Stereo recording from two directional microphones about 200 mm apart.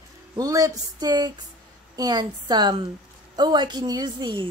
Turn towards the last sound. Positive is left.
turn(degrees=-20)  # may be behind; listen again after turning